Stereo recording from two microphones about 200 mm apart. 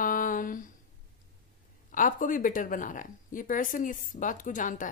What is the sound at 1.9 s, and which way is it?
A woman's voice, 40° left (ahead or behind).